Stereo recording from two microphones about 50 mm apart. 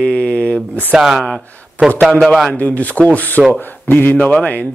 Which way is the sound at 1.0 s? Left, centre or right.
Centre.